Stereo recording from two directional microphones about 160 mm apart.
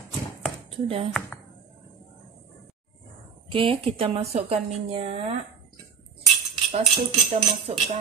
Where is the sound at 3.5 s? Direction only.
35° right (ahead or behind).